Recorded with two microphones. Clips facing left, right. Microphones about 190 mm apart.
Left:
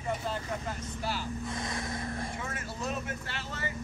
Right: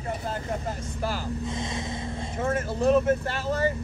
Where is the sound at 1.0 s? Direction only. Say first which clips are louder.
Right 5 dB; 45° right (ahead or behind).